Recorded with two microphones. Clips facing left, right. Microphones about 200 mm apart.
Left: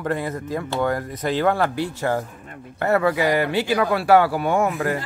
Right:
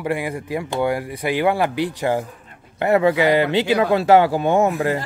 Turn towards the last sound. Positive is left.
turn(degrees=-15)  # may be behind; listen again after turning